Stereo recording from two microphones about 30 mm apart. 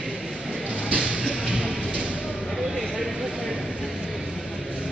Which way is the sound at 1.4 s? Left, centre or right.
Right.